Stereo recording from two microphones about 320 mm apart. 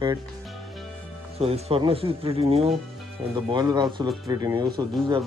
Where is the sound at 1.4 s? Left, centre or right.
Centre.